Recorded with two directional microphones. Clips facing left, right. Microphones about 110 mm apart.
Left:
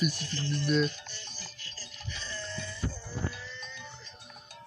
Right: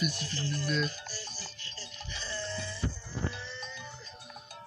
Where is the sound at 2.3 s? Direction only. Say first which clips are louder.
Right 3 dB; 30° right (ahead or behind).